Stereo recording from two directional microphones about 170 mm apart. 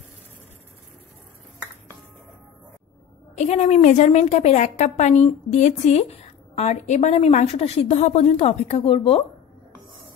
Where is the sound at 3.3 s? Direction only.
40° left (ahead or behind).